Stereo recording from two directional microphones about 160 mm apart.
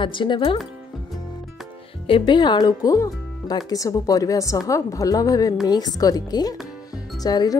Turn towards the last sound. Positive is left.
turn(degrees=25)  # may be behind; listen again after turning